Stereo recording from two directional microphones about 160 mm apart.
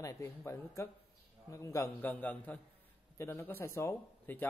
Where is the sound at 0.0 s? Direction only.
20° left (ahead or behind).